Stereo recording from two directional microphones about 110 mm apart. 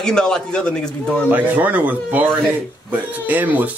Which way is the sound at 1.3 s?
15° right (ahead or behind).